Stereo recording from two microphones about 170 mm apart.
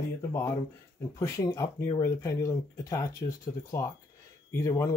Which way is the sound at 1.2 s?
15° left (ahead or behind).